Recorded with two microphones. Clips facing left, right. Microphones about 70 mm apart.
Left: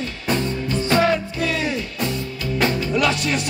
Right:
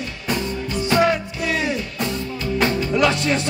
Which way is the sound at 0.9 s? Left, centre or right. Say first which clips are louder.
Right 1 dB; right.